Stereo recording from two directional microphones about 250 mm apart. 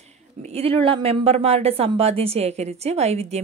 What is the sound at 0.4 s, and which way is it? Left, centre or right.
Speech, right.